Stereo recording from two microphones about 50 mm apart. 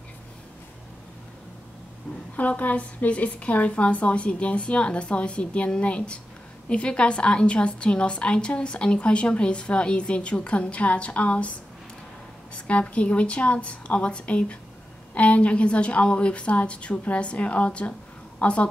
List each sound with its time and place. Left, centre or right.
2.3 s a woman's voice: left
12.5 s a woman's voice: left